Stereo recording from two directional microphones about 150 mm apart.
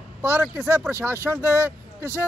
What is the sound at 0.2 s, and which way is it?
Speech, 15° right (ahead or behind).